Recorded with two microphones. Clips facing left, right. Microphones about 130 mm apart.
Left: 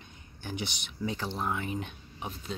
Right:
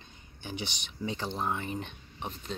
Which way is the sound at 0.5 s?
10° left (ahead or behind).